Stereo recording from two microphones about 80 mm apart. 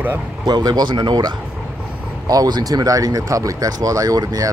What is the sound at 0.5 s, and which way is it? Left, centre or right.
Speech, right.